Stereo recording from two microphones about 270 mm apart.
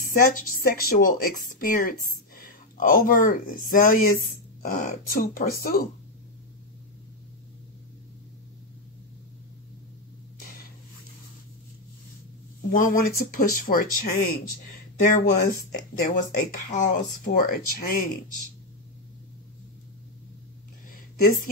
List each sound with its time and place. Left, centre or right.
0.0 s speech: left
12.7 s speech: left
20.9 s a sound: left